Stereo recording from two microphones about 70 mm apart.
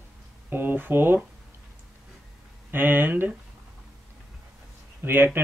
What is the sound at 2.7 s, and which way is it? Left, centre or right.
Speech, right.